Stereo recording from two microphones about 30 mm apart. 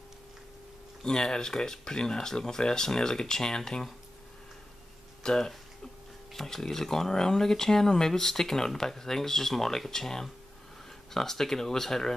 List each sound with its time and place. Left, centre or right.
1.0 s speech: left
5.2 s speech: left
6.3 s speech: centre